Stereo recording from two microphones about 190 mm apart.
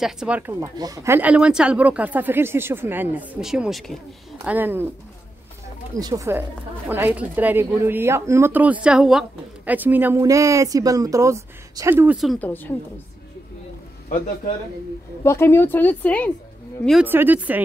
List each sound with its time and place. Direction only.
0.0 s speech: 5° right (ahead or behind)
4.5 s speech: 10° right (ahead or behind)
5.9 s a woman's voice: 20° right (ahead or behind); by 12.4 s centre (ahead or behind)
15.2 s speech: 10° left (ahead or behind)
17.0 s speech: 10° right (ahead or behind)